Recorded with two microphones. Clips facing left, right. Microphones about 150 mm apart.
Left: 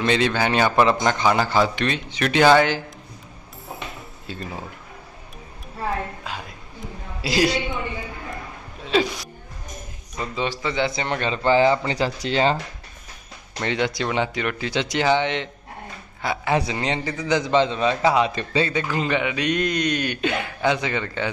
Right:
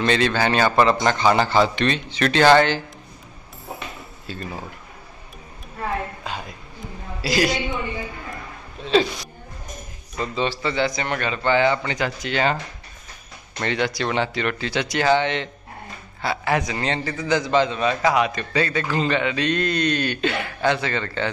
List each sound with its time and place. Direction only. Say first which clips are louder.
0.0 s a man's voice: right 1 dB; 15° left (ahead or behind)
4.3 s a man's voice: even; 20° left (ahead or behind)
7.2 s a man's voice: even; 25° left (ahead or behind)
10.1 s a man's voice: right 2 dB; 10° left (ahead or behind)
10.9 s a man's voice: left 1 dB; 25° left (ahead or behind)
13.6 s a man's voice: even; 15° left (ahead or behind)